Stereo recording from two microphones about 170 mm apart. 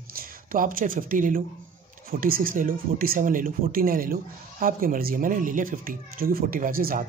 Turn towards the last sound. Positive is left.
turn(degrees=-60)  # may be behind; listen again after turning